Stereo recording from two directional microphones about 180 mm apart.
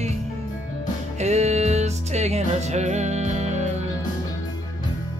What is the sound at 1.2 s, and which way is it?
Music, 40° right (ahead or behind).